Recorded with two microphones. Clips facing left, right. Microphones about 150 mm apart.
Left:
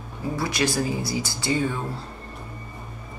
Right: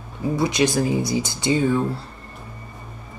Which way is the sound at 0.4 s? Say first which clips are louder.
Right 5 dB; 20° right (ahead or behind).